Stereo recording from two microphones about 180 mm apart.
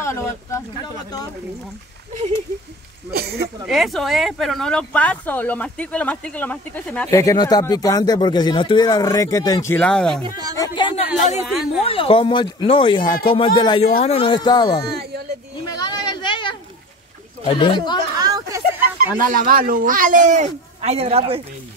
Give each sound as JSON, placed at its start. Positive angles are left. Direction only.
{"t": 0.0, "sound": "speech", "side_deg": 15}
{"t": 3.1, "sound": "speech", "side_deg": -60}
{"t": 3.6, "sound": "speech", "side_deg": 0}
{"t": 9.8, "sound": "speech", "side_deg": 5}
{"t": 10.2, "sound": "speech", "side_deg": -20}
{"t": 10.6, "sound": "speech", "side_deg": 25}
{"t": 11.4, "sound": "speech", "side_deg": 0}
{"t": 11.9, "sound": "speech", "side_deg": 30}
{"t": 14.9, "sound": "a sound", "side_deg": -65}
{"t": 15.8, "sound": "a sound", "side_deg": 20}
{"t": 17.5, "sound": "speech", "side_deg": 25}
{"t": 18.1, "sound": "speech", "side_deg": -20}
{"t": 19.1, "sound": "speech", "side_deg": -50}